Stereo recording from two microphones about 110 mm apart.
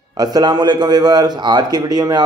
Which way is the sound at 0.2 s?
40° right (ahead or behind).